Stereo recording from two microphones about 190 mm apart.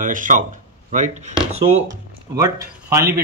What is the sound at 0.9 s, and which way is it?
Chopping, 40° right (ahead or behind).